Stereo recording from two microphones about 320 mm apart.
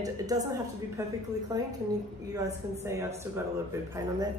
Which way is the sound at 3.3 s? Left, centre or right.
Centre.